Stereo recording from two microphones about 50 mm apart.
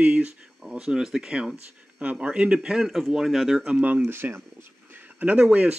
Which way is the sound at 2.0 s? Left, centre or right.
Right.